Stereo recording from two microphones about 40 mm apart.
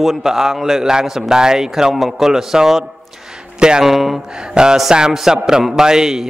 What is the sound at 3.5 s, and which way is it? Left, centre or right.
Speech, right.